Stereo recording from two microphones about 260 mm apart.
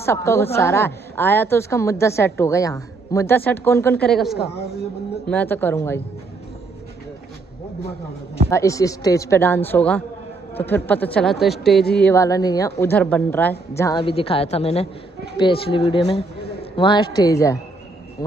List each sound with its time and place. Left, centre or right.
0.0 s a woman's voice: centre
8.5 s a woman's voice: centre